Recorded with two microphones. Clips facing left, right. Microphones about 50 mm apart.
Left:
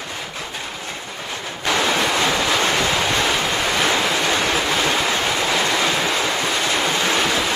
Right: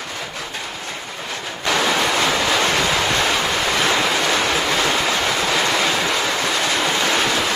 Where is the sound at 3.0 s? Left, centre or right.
Right.